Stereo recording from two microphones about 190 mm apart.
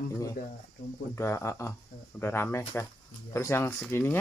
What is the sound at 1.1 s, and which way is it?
A man's voice, 15° left (ahead or behind).